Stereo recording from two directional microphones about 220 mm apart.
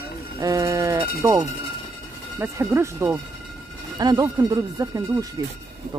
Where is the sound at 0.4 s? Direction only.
15° right (ahead or behind).